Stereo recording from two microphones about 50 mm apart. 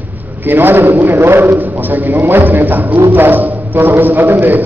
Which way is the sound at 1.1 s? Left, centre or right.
Right.